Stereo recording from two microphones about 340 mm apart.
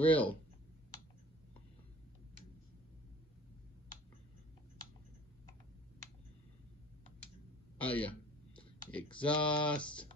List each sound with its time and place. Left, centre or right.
0.0 s speech: centre
7.7 s speech: centre